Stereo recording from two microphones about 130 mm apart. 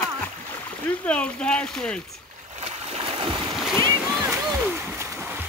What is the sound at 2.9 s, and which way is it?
Splash, 45° right (ahead or behind).